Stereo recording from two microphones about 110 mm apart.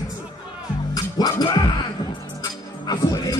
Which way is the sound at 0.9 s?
35° left (ahead or behind).